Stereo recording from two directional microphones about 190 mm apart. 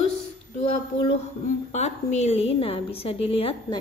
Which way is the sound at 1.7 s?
35° left (ahead or behind).